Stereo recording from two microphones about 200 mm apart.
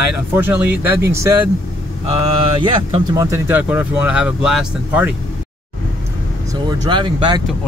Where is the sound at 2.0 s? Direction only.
25° right (ahead or behind); by 5.1 s 5° right (ahead or behind).